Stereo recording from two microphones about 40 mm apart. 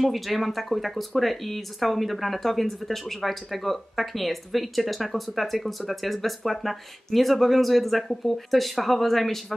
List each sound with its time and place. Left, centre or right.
0.0 s speech: centre